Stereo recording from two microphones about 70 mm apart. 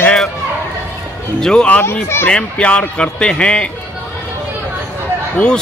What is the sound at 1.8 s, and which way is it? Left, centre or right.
Speech, left.